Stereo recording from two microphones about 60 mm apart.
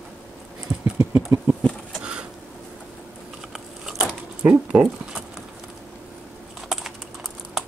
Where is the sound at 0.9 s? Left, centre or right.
Right.